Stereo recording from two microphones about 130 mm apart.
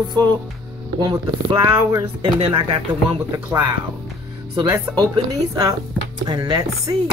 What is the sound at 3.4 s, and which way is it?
Speech, 15° right (ahead or behind).